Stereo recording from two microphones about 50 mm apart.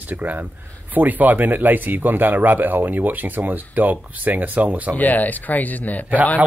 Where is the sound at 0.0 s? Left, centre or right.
Right.